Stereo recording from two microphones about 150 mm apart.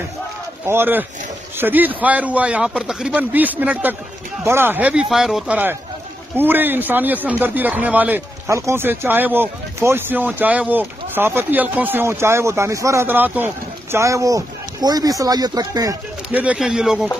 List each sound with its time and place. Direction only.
0.7 s speech: 15° right (ahead or behind)
16.3 s speech: 10° right (ahead or behind)